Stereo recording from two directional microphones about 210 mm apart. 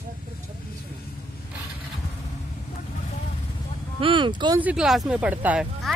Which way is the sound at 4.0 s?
25° right (ahead or behind).